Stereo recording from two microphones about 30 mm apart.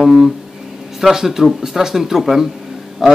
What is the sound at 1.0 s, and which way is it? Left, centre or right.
Speech, centre.